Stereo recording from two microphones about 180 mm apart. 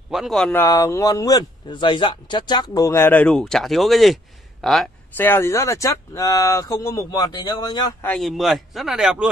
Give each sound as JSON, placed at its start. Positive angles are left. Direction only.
{"t": 0.1, "sound": "speech", "side_deg": 0}
{"t": 5.1, "sound": "speech", "side_deg": 10}
{"t": 8.0, "sound": "speech", "side_deg": 5}